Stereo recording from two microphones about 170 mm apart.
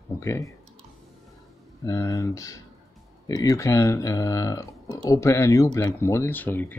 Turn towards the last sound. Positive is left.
turn(degrees=10)  # may be behind; listen again after turning